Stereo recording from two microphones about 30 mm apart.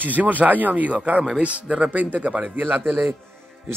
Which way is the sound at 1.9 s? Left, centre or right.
Right.